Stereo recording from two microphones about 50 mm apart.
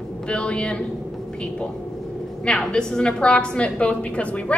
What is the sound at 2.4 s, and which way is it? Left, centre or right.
A woman's voice, centre.